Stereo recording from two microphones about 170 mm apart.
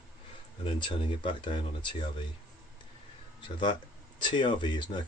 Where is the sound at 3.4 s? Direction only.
30° left (ahead or behind).